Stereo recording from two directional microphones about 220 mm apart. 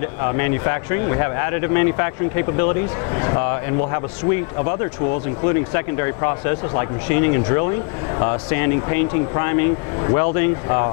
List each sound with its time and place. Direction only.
0.2 s speech: 15° left (ahead or behind)
5.4 s speech: 15° left (ahead or behind)